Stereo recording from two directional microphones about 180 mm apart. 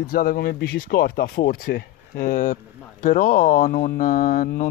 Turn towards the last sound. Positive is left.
turn(degrees=50)  # may be behind; listen again after turning